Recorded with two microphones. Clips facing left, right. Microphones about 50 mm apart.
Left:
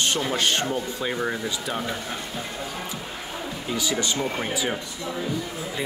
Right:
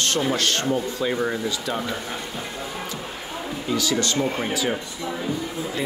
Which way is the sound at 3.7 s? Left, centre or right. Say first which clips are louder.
Right 3 dB; centre.